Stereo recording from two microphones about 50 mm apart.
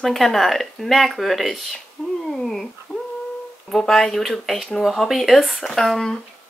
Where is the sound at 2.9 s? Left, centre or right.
Left.